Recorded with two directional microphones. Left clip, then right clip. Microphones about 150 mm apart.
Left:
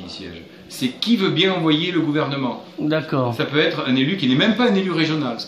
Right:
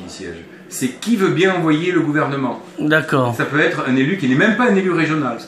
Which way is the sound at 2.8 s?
10° right (ahead or behind).